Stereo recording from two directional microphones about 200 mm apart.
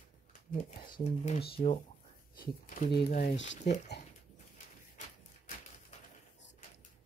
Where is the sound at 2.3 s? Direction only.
40° left (ahead or behind).